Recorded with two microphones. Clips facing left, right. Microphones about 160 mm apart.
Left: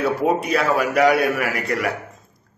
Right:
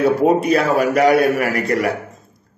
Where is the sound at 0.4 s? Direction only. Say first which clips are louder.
Right 4 dB; 40° right (ahead or behind).